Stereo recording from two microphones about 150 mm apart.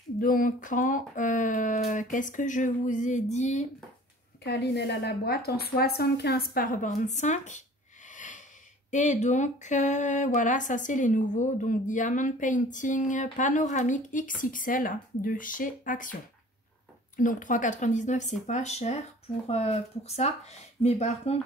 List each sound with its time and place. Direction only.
0.2 s speech: 65° left (ahead or behind); by 3.6 s 50° left (ahead or behind)
4.5 s a woman's voice: 90° left; by 16.2 s 60° left (ahead or behind)
17.2 s speech: 60° left (ahead or behind)